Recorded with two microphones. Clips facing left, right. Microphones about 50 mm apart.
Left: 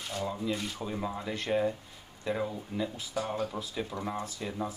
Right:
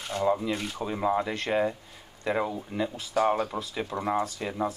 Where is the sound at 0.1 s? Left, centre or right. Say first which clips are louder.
Right 7 dB; right.